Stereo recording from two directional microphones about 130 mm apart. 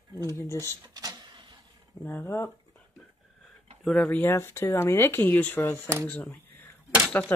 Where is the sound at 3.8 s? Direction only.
Centre (ahead or behind).